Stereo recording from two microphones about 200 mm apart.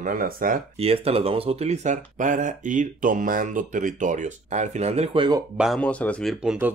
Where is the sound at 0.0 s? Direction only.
45° right (ahead or behind).